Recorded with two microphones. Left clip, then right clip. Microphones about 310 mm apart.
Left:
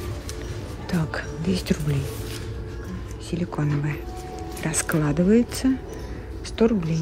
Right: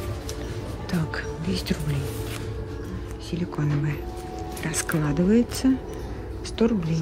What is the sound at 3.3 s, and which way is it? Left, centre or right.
Speech, centre.